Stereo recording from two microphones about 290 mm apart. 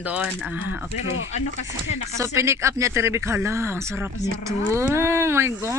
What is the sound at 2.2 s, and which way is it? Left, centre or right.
A man's voice, centre.